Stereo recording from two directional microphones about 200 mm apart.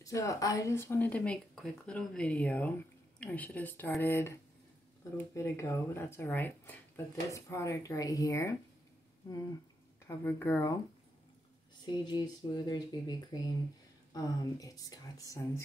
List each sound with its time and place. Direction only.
0.0 s speech: 15° left (ahead or behind)
10.0 s speech: 10° left (ahead or behind)
11.8 s speech: 20° left (ahead or behind)